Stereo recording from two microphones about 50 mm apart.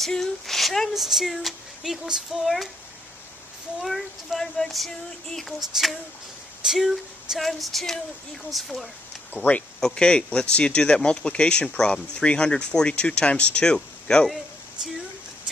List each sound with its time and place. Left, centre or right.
0.0 s speech: centre
3.8 s speech: centre
9.4 s speech: right
9.8 s speech: centre